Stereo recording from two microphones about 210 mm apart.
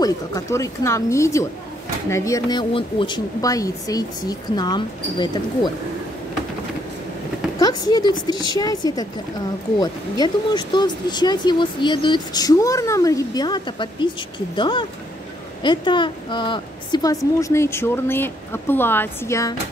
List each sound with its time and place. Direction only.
0.0 s speech: 15° left (ahead or behind)
7.5 s speech: 20° left (ahead or behind)